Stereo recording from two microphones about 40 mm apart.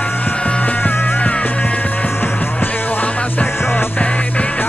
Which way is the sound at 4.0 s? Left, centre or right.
Left.